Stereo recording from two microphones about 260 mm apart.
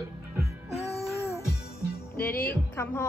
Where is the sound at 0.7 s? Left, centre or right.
Left.